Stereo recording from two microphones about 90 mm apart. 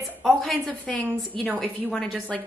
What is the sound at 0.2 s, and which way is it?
A woman's voice, 5° left (ahead or behind).